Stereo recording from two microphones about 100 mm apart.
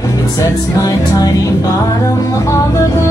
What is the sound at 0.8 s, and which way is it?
Music, 35° left (ahead or behind).